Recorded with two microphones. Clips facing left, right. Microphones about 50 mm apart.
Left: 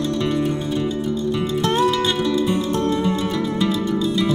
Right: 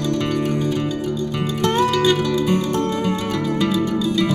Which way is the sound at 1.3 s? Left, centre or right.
Right.